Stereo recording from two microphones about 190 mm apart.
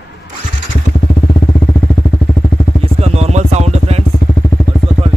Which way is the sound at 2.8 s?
35° right (ahead or behind).